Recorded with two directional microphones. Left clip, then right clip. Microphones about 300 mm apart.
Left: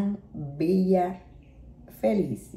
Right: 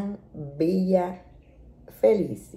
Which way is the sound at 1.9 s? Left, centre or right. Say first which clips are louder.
Right 6 dB; centre.